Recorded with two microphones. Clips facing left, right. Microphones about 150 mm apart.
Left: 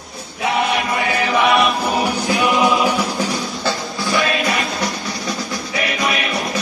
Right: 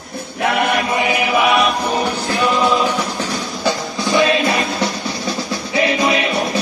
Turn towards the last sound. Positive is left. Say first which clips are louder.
# right 5 dB
turn(degrees=-30)  # may be behind; listen again after turning